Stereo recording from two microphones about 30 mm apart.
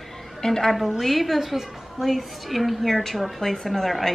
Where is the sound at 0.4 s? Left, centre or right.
Centre.